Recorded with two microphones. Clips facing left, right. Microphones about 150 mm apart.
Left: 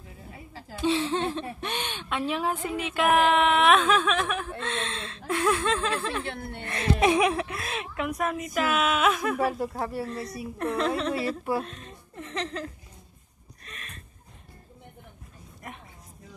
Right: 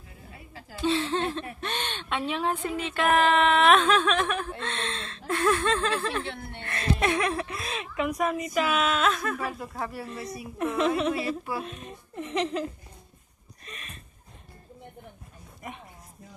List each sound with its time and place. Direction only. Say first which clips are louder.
0.7 s a woman's voice: left 1 dB; 15° left (ahead or behind)
9.5 s speech: left 5 dB; 35° left (ahead or behind)
10.6 s a woman's voice: right 2 dB; 5° right (ahead or behind)
13.7 s a sound: right 1 dB; centre (ahead or behind)